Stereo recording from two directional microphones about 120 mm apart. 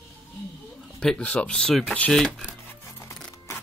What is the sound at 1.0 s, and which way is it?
Speech, 10° left (ahead or behind).